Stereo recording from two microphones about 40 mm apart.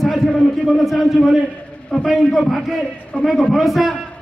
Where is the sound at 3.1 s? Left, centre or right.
Left.